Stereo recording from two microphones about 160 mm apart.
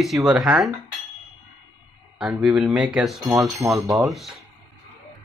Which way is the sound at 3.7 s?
20° right (ahead or behind).